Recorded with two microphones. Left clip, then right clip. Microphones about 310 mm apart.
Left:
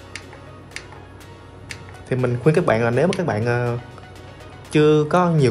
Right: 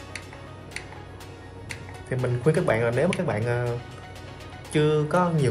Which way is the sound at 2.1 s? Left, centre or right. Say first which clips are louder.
Left 5 dB; left.